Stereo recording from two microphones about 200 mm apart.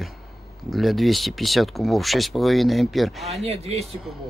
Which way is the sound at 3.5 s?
30° right (ahead or behind).